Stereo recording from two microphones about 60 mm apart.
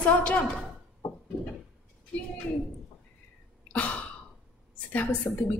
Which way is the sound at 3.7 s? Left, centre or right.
Left.